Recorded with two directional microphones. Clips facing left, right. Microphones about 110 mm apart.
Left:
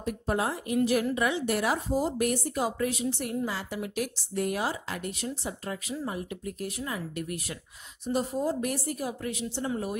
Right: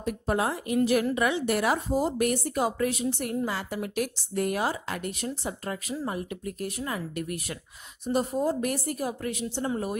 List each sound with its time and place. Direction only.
0.0 s a woman's voice: 65° right (ahead or behind); by 9.7 s 50° right (ahead or behind)